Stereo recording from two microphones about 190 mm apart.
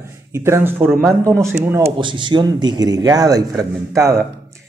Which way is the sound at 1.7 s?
20° right (ahead or behind).